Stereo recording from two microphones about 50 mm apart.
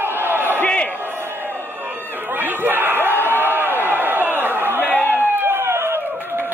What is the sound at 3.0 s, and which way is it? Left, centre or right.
Crowd, left.